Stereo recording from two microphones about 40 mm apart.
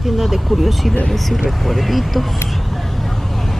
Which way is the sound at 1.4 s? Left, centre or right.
Centre.